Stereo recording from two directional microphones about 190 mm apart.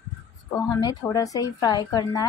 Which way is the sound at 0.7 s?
20° left (ahead or behind).